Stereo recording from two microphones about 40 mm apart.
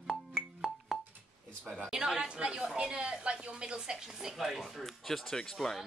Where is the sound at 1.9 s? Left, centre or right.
Centre.